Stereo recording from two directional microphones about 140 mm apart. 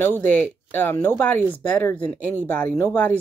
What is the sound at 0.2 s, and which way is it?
Speech, 15° left (ahead or behind).